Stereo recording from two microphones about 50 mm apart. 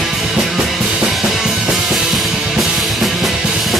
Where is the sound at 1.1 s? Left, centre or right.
Centre.